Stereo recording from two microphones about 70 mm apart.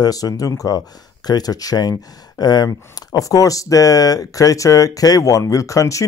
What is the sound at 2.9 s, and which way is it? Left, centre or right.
Speech, left.